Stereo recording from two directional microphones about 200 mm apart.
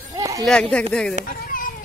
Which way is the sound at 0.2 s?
15° right (ahead or behind).